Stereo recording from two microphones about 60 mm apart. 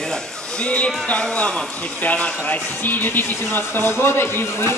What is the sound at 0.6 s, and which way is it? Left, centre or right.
A man's voice, left.